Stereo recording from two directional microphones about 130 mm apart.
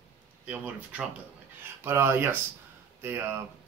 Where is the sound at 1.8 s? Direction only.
20° right (ahead or behind).